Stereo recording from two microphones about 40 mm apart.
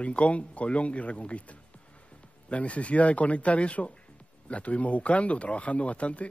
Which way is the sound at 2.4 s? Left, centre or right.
Left.